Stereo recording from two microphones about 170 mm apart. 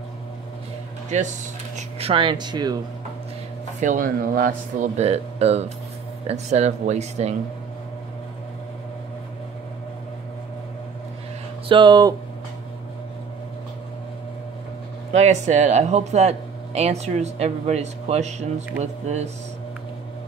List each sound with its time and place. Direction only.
1.1 s speech: 45° right (ahead or behind)
2.0 s speech: 35° right (ahead or behind)
3.8 s speech: 55° right (ahead or behind)
11.7 s speech: 25° right (ahead or behind)
15.1 s speech: 45° right (ahead or behind)